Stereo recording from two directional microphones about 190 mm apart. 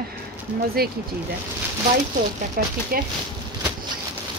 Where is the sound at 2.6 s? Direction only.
50° right (ahead or behind).